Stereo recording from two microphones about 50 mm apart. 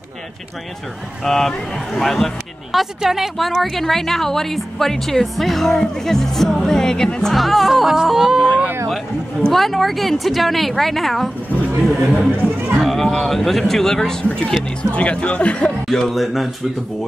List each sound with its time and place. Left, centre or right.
1.2 s a woman's voice: centre
7.3 s speech: centre
9.5 s speech: centre
14.8 s speech: left
15.9 s speech: centre